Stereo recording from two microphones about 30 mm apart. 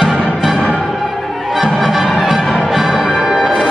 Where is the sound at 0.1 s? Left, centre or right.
Centre.